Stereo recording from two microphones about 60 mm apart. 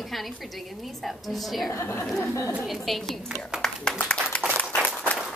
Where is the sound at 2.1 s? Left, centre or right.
Centre.